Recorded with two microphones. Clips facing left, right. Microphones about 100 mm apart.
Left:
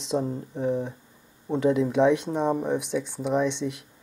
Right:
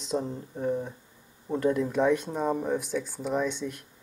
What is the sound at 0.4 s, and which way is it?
Speech, centre (ahead or behind).